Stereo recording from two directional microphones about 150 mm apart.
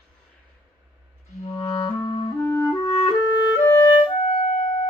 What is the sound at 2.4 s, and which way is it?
Clarinet, 25° left (ahead or behind).